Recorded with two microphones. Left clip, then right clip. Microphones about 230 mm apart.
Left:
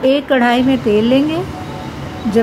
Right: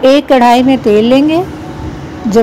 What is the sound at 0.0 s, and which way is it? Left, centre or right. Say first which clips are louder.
Speech: right 6 dB; centre.